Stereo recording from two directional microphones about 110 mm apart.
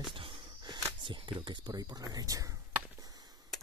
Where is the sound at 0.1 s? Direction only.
50° right (ahead or behind).